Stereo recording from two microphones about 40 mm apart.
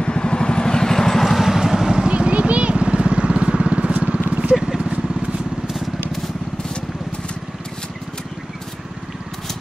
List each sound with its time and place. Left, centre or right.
0.0 s vehicle: left; by 2.0 s centre
2.0 s vehicle: right